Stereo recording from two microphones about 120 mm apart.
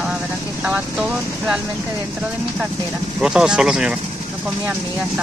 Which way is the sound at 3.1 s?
5° right (ahead or behind).